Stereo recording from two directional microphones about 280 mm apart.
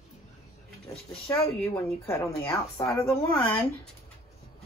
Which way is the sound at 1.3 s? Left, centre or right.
Centre.